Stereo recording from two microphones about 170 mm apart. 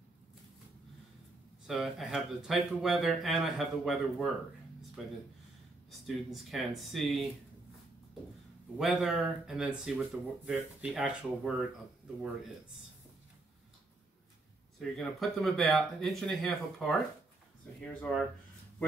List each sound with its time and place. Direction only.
1.7 s speech: centre (ahead or behind)
5.9 s speech: centre (ahead or behind)
8.7 s speech: centre (ahead or behind)
14.8 s speech: centre (ahead or behind)